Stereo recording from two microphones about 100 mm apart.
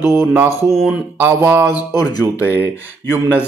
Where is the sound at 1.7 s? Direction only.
40° left (ahead or behind).